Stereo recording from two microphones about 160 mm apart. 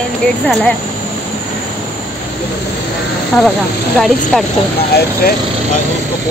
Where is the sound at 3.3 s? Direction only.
20° left (ahead or behind).